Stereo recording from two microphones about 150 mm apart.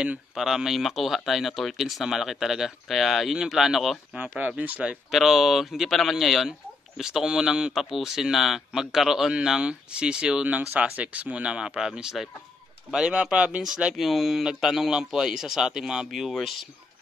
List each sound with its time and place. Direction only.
0.0 s speech: 5° right (ahead or behind)